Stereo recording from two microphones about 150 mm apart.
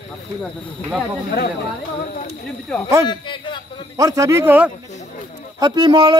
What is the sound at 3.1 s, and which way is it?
Speech, 30° left (ahead or behind).